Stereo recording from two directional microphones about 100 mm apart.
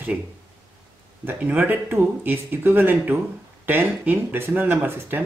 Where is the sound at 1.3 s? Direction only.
15° right (ahead or behind).